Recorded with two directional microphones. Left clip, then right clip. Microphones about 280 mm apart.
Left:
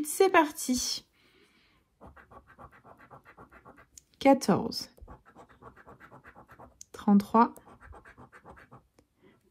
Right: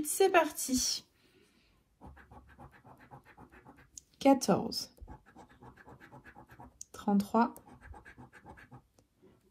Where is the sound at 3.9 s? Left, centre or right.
Left.